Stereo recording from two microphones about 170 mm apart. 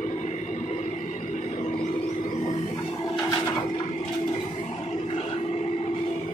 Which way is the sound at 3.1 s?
25° left (ahead or behind).